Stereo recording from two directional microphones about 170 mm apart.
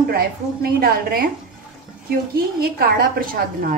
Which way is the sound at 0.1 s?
60° right (ahead or behind).